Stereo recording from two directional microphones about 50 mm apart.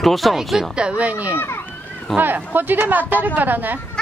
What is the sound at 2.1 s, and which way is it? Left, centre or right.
Speech, right.